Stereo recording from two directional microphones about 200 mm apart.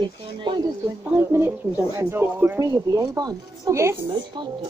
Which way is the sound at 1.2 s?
15° right (ahead or behind).